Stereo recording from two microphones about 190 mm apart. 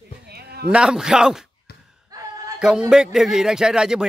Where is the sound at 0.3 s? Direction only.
55° right (ahead or behind).